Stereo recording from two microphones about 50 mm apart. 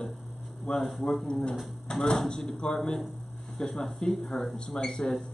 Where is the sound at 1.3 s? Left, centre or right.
Centre.